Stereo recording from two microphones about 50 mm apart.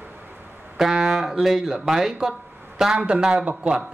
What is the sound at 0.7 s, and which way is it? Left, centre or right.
Speech, centre.